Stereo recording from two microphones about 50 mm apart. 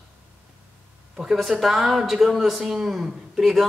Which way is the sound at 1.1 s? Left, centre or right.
Centre.